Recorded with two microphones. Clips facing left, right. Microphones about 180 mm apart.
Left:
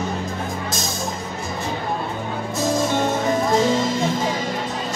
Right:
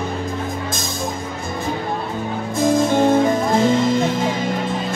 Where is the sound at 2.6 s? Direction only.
55° right (ahead or behind).